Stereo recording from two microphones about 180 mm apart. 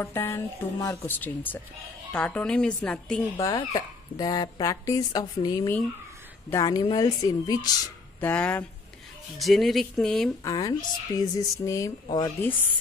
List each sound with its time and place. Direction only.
0.0 s a woman's voice: 15° left (ahead or behind)
3.3 s speech: 25° left (ahead or behind)
8.2 s a woman's voice: 5° left (ahead or behind)
10.4 s speech: 20° left (ahead or behind)